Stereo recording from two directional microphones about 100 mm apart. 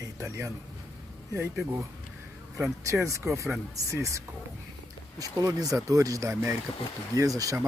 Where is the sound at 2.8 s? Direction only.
30° right (ahead or behind).